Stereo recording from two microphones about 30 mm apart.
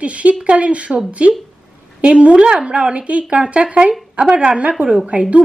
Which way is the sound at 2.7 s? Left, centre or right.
Right.